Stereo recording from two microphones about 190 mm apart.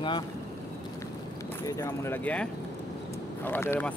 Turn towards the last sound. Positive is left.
turn(degrees=10)  # may be behind; listen again after turning